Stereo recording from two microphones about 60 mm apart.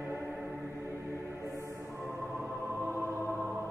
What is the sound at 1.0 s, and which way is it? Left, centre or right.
Music, right.